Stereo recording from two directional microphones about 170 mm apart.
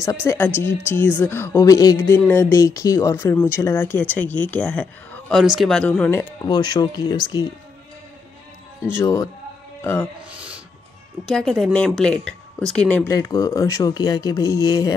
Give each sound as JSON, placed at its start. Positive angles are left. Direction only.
{"t": 0.0, "sound": "a woman's voice", "side_deg": 20}
{"t": 6.4, "sound": "speech", "side_deg": 25}
{"t": 9.0, "sound": "speech", "side_deg": 20}
{"t": 10.3, "sound": "a sound", "side_deg": -5}
{"t": 11.2, "sound": "speech", "side_deg": 0}
{"t": 13.1, "sound": "speech", "side_deg": 20}